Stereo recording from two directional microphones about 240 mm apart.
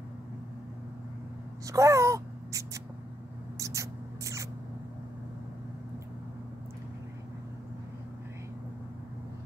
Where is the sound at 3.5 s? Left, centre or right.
Centre.